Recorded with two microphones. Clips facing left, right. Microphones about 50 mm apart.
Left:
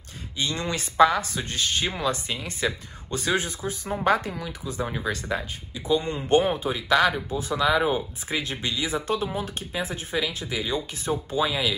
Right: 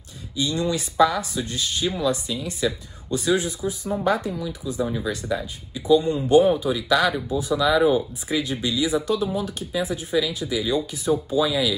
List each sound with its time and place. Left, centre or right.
0.4 s speech: left